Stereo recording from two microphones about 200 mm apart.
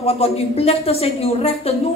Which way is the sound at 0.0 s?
30° left (ahead or behind).